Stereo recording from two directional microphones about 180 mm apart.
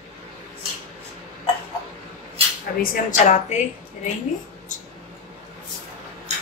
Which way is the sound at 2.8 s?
50° left (ahead or behind).